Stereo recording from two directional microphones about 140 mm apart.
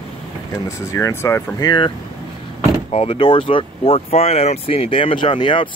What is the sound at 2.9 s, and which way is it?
Speech, 45° left (ahead or behind).